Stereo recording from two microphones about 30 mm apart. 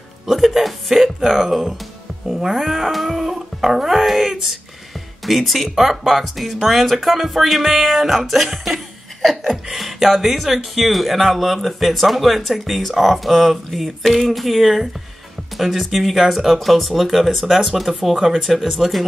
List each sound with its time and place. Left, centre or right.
0.6 s speech: centre
3.3 s dog: centre
4.0 s speech: centre
4.3 s speech: centre
4.9 s speech: centre
13.7 s a sound: centre
14.2 s speech: centre